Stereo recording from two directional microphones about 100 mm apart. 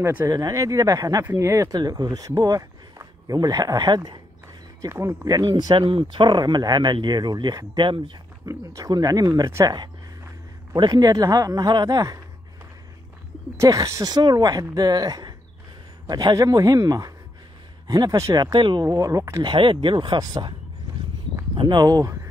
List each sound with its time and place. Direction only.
0.0 s speech: 20° right (ahead or behind)
0.3 s speech: 35° right (ahead or behind)
1.8 s speech: 40° right (ahead or behind)
4.8 s speech: 30° right (ahead or behind); by 8.2 s 55° right (ahead or behind)
8.5 s speech: 35° right (ahead or behind)
10.7 s speech: 40° right (ahead or behind)
13.6 s speech: 35° right (ahead or behind)
19.4 s speech: 55° right (ahead or behind)
21.5 s speech: 45° right (ahead or behind)